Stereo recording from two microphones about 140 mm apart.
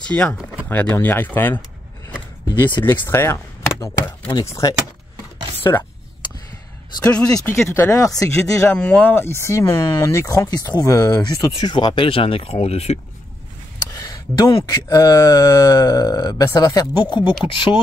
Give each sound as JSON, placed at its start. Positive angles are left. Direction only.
{"t": 0.1, "sound": "speech", "side_deg": 10}
{"t": 2.8, "sound": "speech", "side_deg": 15}
{"t": 3.8, "sound": "chopping", "side_deg": 20}
{"t": 4.5, "sound": "speech", "side_deg": 20}
{"t": 7.1, "sound": "speech", "side_deg": 5}
{"t": 7.7, "sound": "speech", "side_deg": 25}
{"t": 8.7, "sound": "speech", "side_deg": 10}
{"t": 13.7, "sound": "speech", "side_deg": 25}